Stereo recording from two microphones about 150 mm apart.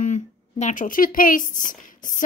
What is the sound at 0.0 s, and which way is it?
Speech, 55° left (ahead or behind).